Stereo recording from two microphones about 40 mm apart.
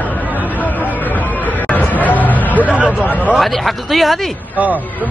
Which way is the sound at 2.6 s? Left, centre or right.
Right.